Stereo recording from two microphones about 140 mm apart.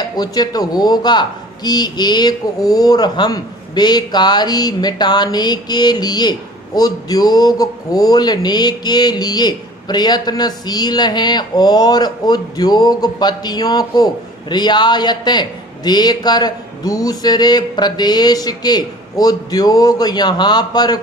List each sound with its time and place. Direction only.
0.1 s speech: 30° left (ahead or behind)